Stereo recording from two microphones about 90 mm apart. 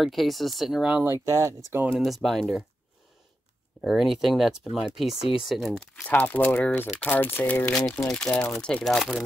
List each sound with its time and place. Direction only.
0.0 s speech: centre (ahead or behind)
1.0 s speech: 35° right (ahead or behind)
1.9 s speech: centre (ahead or behind)
3.8 s speech: 5° right (ahead or behind)
6.0 s speech: 15° left (ahead or behind)